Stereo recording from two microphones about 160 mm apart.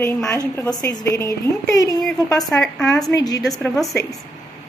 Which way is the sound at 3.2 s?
20° left (ahead or behind).